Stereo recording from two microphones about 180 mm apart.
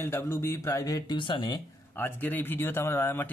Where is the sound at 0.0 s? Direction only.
15° left (ahead or behind).